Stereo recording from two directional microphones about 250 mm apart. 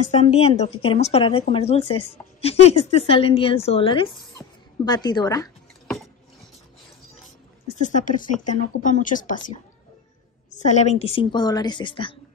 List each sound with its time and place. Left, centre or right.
0.4 s speech: left
7.6 s speech: left
10.5 s speech: left